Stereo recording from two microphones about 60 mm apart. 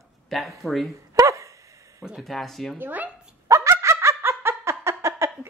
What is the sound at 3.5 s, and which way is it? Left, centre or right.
Snicker, right.